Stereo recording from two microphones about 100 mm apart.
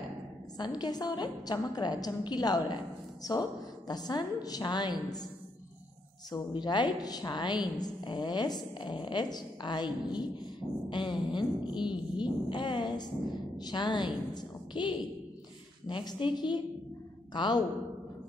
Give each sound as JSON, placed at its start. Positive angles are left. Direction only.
{"t": 0.6, "sound": "a woman's voice", "side_deg": 45}
{"t": 6.3, "sound": "a woman's voice", "side_deg": 45}